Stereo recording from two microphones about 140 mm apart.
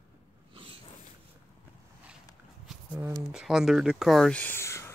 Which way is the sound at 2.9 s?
20° right (ahead or behind).